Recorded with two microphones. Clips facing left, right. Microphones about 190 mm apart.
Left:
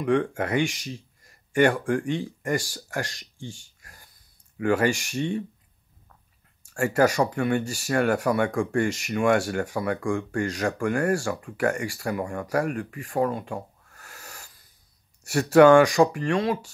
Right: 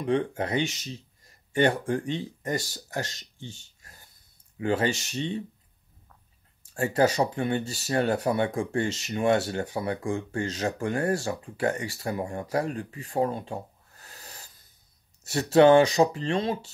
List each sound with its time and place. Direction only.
0.0 s speech: 20° right (ahead or behind)
6.6 s speech: 20° right (ahead or behind)
13.2 s a sound: 25° right (ahead or behind)
15.2 s speech: 20° right (ahead or behind)